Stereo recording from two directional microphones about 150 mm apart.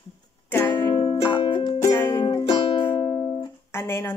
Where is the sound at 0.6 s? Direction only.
30° left (ahead or behind).